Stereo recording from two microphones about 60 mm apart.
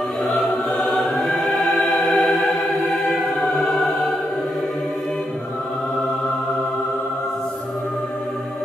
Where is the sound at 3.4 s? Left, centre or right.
Centre.